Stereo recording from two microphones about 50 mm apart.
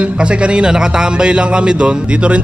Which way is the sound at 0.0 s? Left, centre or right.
Right.